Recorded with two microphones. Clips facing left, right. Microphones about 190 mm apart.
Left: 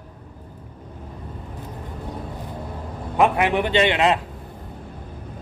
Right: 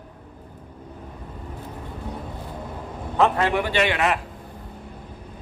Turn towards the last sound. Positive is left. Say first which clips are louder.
# left 3 dB
turn(degrees=25)  # may be behind; listen again after turning